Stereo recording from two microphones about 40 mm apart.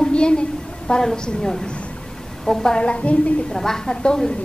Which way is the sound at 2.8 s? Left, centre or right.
Left.